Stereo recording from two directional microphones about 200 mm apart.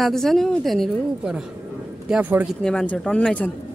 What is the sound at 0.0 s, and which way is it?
A woman's voice, centre (ahead or behind).